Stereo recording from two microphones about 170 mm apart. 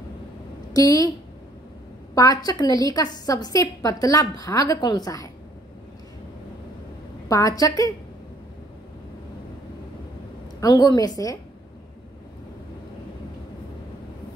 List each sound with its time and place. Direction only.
0.7 s a woman's voice: 20° left (ahead or behind)
2.1 s a woman's voice: 25° left (ahead or behind)
7.2 s a woman's voice: 20° left (ahead or behind)
10.6 s a woman's voice: 25° left (ahead or behind)